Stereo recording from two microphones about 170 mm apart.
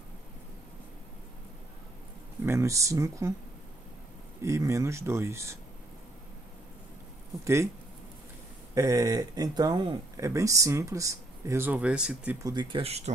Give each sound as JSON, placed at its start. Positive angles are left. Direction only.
{"t": 2.4, "sound": "speech", "side_deg": -15}
{"t": 4.4, "sound": "speech", "side_deg": -20}
{"t": 7.4, "sound": "speech", "side_deg": -15}
{"t": 8.7, "sound": "speech", "side_deg": -20}
{"t": 12.4, "sound": "speech", "side_deg": -25}